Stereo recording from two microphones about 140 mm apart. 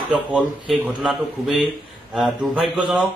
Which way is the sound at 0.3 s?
5° right (ahead or behind).